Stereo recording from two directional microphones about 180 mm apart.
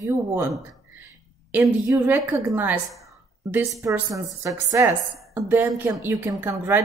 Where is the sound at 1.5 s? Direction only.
10° right (ahead or behind).